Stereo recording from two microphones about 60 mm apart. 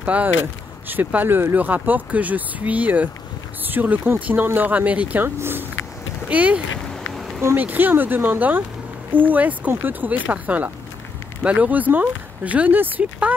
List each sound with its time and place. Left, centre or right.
0.0 s speech: right
5.2 s speech: right
6.2 s speech: right
6.9 s a sound: centre
7.5 s speech: right